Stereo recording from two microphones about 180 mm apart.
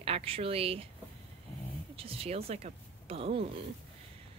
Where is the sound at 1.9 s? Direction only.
30° right (ahead or behind).